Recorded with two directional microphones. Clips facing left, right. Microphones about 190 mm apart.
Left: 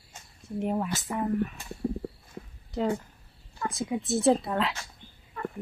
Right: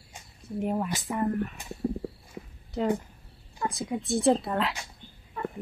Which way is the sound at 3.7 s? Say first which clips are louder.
Left 2 dB; centre (ahead or behind).